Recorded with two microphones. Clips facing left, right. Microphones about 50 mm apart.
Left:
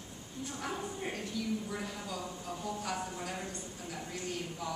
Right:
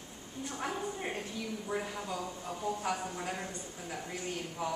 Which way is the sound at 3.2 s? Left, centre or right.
Right.